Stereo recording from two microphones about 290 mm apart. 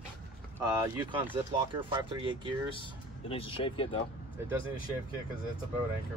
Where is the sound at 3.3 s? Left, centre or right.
Centre.